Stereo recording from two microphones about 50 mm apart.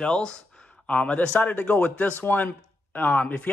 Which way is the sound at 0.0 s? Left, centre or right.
Centre.